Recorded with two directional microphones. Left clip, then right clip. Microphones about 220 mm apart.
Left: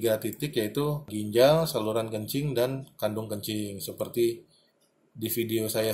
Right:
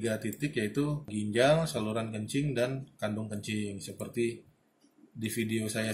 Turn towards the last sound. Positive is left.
turn(degrees=25)  # may be behind; listen again after turning